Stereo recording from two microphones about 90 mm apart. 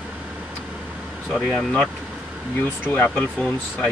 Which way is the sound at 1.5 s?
10° left (ahead or behind).